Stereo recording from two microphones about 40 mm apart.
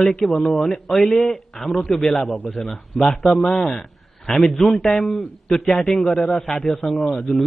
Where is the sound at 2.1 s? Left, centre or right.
Centre.